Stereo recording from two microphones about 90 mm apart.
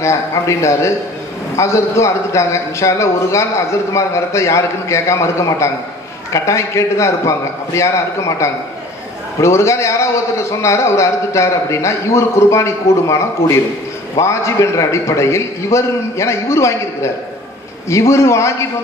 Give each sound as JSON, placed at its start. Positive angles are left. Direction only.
{"t": 0.0, "sound": "a man's voice", "side_deg": 35}